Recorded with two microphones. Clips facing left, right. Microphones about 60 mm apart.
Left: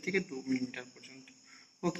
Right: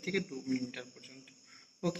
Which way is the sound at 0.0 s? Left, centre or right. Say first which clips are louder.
Left 2 dB; left.